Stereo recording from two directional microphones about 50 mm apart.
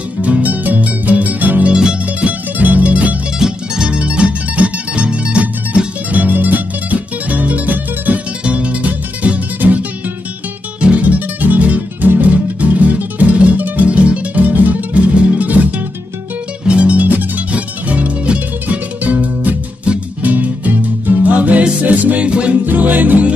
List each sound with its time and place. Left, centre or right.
0.2 s music: right
1.7 s music: centre
2.0 s music: right
3.3 s music: centre
3.9 s music: right
22.7 s music: right